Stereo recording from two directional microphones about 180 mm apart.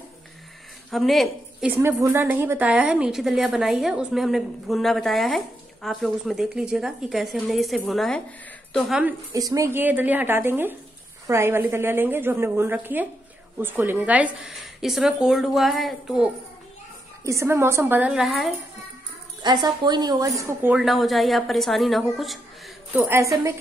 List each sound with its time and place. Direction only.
0.8 s a woman's voice: centre (ahead or behind)
1.7 s a woman's voice: 15° right (ahead or behind)
9.3 s a woman's voice: 20° right (ahead or behind); by 16.3 s centre (ahead or behind)
17.2 s a woman's voice: 15° right (ahead or behind); by 18.5 s centre (ahead or behind)
19.4 s a woman's voice: 25° right (ahead or behind); by 22.4 s centre (ahead or behind)
22.9 s a woman's voice: 15° right (ahead or behind)